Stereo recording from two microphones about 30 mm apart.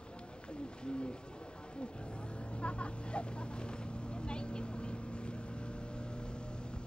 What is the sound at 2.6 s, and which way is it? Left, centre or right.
Vehicle, left.